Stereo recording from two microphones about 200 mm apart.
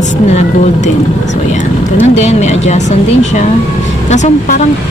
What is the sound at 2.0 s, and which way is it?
Speech, 35° left (ahead or behind).